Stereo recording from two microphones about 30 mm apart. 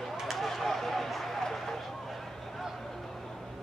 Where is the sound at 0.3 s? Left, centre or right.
Centre.